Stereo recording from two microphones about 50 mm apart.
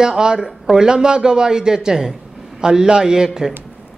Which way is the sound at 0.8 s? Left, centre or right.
Centre.